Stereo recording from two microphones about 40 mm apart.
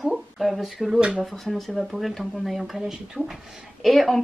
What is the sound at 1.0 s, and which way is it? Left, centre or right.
Speech, right.